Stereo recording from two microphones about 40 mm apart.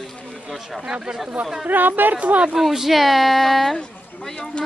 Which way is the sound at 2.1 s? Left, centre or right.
Right.